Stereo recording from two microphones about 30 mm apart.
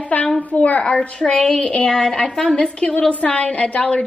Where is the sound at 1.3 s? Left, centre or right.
Left.